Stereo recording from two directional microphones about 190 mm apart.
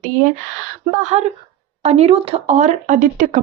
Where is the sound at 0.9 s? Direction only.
35° right (ahead or behind).